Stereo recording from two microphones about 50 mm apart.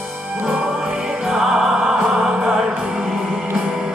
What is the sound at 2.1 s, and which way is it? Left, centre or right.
Mantra, centre.